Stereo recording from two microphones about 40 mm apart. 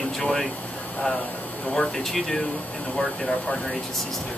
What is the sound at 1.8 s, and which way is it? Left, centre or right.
Speech, centre.